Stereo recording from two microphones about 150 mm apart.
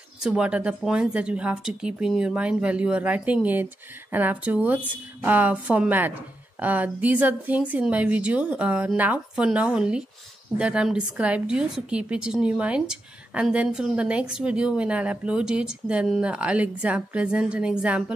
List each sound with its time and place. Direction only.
0.2 s a woman's voice: 5° right (ahead or behind)